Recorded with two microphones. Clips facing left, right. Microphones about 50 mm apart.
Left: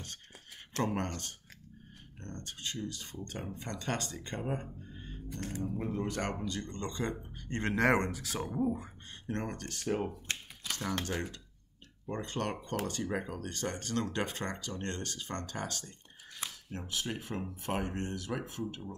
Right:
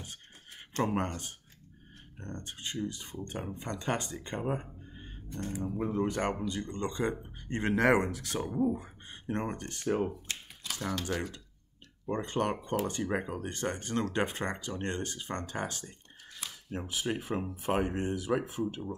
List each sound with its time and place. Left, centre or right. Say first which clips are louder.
0.7 s speech: right 3 dB; centre
9.3 s speech: right 3 dB; centre
11.1 s speech: right 2 dB; centre
12.1 s speech: right 5 dB; right